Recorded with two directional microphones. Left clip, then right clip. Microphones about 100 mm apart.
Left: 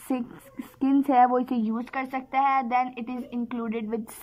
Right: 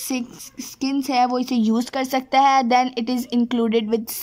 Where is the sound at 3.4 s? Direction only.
60° right (ahead or behind).